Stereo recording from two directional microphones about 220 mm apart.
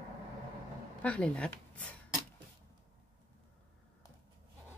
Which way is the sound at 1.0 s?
5° left (ahead or behind).